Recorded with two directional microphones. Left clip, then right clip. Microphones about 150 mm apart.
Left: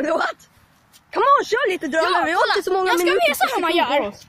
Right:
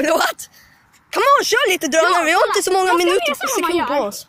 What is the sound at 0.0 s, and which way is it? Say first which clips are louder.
Speech: right 4 dB; 25° right (ahead or behind).